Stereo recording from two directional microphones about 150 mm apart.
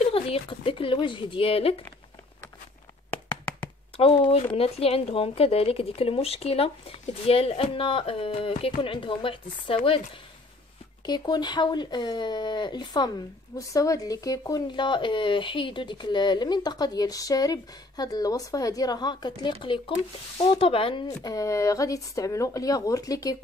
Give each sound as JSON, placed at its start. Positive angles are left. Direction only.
{"t": 0.0, "sound": "speech", "side_deg": 40}
{"t": 3.3, "sound": "hands", "side_deg": 30}
{"t": 4.0, "sound": "speech", "side_deg": 40}
{"t": 11.1, "sound": "speech", "side_deg": 30}